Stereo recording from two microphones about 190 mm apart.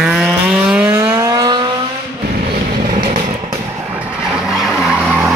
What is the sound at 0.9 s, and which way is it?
Vehicle, 20° right (ahead or behind).